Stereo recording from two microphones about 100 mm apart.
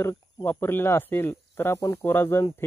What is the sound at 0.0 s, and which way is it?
Speech, 25° left (ahead or behind).